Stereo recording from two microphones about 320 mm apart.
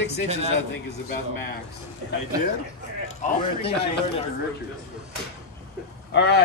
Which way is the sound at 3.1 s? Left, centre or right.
Centre.